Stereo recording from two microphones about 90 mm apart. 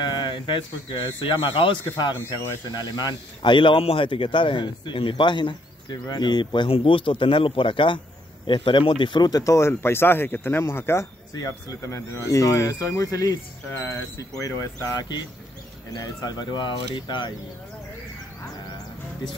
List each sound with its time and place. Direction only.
0.0 s speech: 55° left (ahead or behind); by 11.1 s 25° left (ahead or behind)
11.3 s speech: 40° left (ahead or behind); by 17.3 s 60° left (ahead or behind)